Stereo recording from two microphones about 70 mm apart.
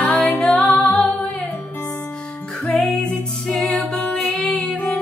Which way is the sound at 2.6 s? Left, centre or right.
Centre.